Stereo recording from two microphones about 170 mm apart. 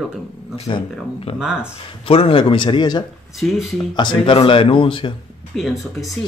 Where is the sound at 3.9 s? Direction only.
25° left (ahead or behind).